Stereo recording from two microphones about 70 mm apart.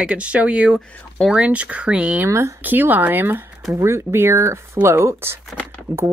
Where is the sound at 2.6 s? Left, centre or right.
Right.